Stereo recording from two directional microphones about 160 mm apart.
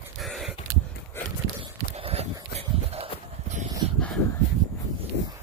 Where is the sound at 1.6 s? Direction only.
35° right (ahead or behind).